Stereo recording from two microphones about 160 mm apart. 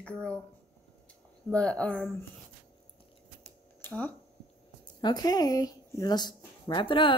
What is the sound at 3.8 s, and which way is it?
Speech, 10° left (ahead or behind).